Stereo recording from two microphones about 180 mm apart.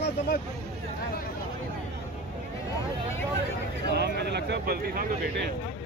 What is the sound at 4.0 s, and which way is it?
Speech, 65° right (ahead or behind).